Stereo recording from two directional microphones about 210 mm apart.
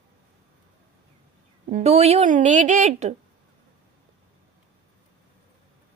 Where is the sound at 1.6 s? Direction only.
30° right (ahead or behind).